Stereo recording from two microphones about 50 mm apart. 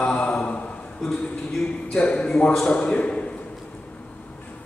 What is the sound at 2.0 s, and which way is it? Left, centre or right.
A man's voice, left.